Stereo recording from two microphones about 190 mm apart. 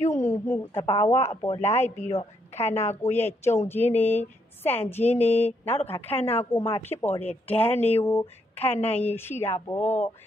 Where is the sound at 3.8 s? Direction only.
35° left (ahead or behind).